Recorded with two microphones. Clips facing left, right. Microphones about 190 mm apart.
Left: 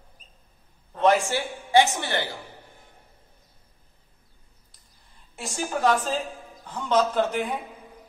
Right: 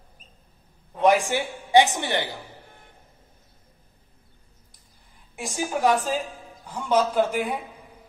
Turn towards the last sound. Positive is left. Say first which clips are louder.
# right 1 dB
turn(degrees=-10)  # may be behind; listen again after turning